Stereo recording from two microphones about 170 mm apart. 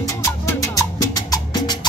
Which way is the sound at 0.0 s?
15° left (ahead or behind).